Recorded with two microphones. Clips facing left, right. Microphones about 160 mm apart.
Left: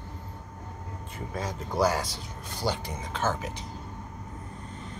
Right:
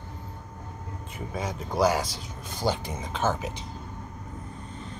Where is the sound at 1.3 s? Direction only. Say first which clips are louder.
Right 1 dB; 15° right (ahead or behind).